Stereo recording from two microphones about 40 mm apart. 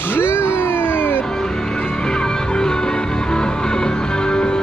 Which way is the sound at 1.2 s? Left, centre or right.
Centre.